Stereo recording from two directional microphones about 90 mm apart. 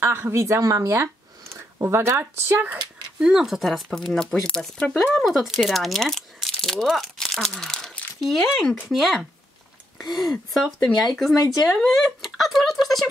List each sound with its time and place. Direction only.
0.0 s a woman's voice: 30° right (ahead or behind)
3.3 s speech: 5° right (ahead or behind)